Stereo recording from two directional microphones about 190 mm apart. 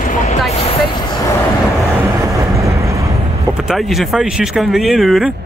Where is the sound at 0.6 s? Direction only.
25° left (ahead or behind).